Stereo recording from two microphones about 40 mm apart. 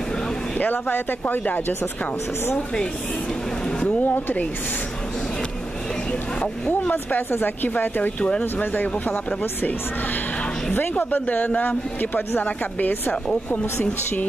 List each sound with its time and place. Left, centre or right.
0.6 s speech: left
3.8 s speech: left
6.9 s speech: left
7.2 s speech: left
8.4 s speech: left